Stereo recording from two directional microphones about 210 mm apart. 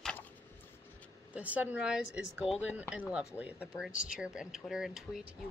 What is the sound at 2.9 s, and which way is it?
Speech, 5° right (ahead or behind).